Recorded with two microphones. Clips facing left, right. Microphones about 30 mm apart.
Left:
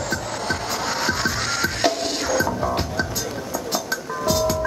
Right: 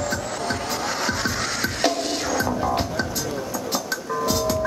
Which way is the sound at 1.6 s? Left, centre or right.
Centre.